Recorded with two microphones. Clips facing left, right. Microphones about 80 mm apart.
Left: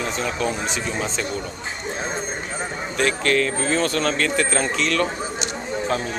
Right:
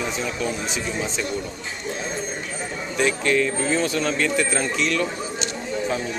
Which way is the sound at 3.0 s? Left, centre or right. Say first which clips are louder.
Even; centre.